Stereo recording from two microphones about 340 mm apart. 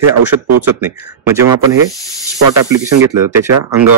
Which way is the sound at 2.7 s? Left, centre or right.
Centre.